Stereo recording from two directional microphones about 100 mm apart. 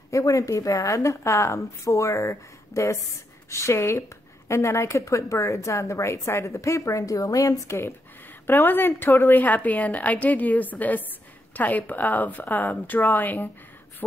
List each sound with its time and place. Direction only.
0.1 s a woman's voice: 35° left (ahead or behind); by 13.5 s 20° left (ahead or behind)